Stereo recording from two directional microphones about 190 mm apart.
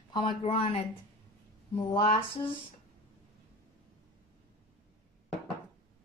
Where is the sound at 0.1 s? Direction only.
30° left (ahead or behind).